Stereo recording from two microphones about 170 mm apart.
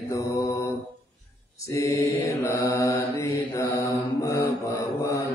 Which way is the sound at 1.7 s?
20° left (ahead or behind).